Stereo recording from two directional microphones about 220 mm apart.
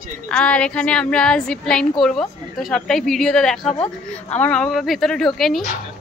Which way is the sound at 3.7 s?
30° left (ahead or behind).